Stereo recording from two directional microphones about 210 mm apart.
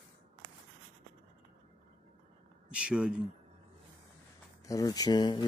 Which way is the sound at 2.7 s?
5° right (ahead or behind).